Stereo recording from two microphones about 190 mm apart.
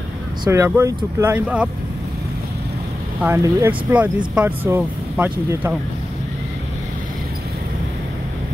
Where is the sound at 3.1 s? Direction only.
10° right (ahead or behind).